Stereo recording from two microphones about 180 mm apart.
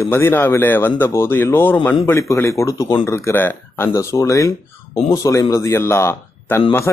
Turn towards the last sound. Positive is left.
turn(degrees=15)  # may be behind; listen again after turning